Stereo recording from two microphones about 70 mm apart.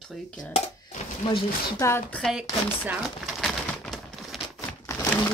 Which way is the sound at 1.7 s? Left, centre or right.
Left.